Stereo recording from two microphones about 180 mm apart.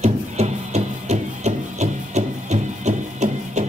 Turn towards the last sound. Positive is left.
turn(degrees=-40)  # may be behind; listen again after turning